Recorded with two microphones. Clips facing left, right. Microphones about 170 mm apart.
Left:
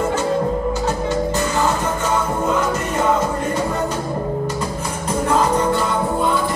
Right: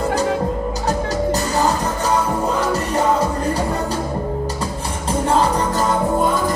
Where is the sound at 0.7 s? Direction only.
40° right (ahead or behind).